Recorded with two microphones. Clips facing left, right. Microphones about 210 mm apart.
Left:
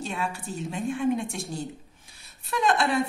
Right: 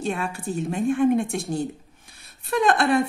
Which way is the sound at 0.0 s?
55° right (ahead or behind).